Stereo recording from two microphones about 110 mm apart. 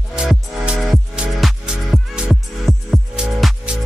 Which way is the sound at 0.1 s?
5° right (ahead or behind).